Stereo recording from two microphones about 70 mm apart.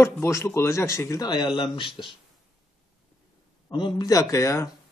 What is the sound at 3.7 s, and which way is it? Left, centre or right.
Speech, left.